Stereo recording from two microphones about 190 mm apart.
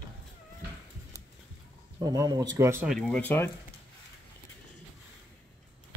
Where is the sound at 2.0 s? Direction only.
20° right (ahead or behind).